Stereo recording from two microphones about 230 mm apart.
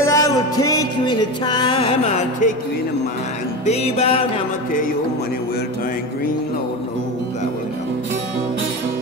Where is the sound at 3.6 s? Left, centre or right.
Left.